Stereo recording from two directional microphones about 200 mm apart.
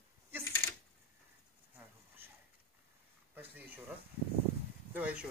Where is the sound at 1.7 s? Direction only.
10° right (ahead or behind).